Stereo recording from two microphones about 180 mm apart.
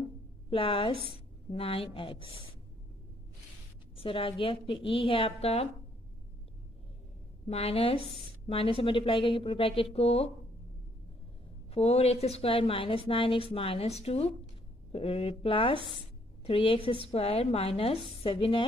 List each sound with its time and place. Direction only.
0.5 s a woman's voice: 30° left (ahead or behind)
3.9 s a woman's voice: 30° left (ahead or behind)
7.4 s a woman's voice: 35° left (ahead or behind)
11.7 s a woman's voice: 35° left (ahead or behind)